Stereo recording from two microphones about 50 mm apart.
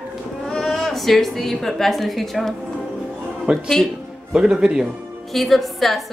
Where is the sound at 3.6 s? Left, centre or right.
Centre.